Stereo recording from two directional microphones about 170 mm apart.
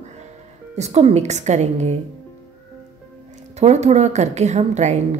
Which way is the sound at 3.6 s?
40° right (ahead or behind).